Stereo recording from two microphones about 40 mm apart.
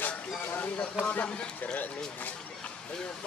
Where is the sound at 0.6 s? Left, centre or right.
Left.